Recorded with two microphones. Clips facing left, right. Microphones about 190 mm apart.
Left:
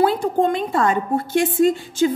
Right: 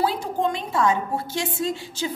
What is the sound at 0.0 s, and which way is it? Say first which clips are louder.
A woman's voice: left 6 dB; 55° left (ahead or behind).